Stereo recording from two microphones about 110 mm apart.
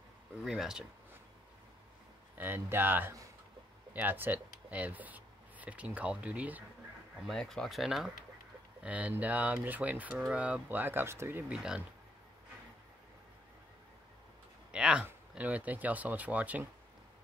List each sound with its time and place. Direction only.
0.4 s speech: 5° right (ahead or behind)
2.3 s speech: 20° right (ahead or behind)
7.2 s speech: 5° left (ahead or behind)
8.8 s speech: 15° right (ahead or behind)
11.5 s speech: 10° right (ahead or behind)
14.7 s speech: 10° right (ahead or behind)